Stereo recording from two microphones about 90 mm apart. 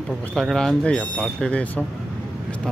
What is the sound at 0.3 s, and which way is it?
Speech, 5° left (ahead or behind).